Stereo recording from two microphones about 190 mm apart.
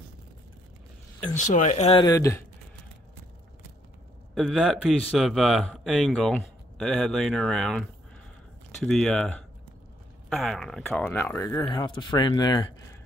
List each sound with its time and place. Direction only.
1.3 s speech: 40° left (ahead or behind)
2.0 s speech: 15° left (ahead or behind)
4.4 s speech: centre (ahead or behind)
8.8 s speech: centre (ahead or behind)
11.6 s speech: 25° left (ahead or behind)